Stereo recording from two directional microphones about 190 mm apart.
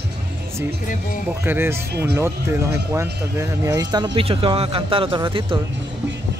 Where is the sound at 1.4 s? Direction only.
10° right (ahead or behind).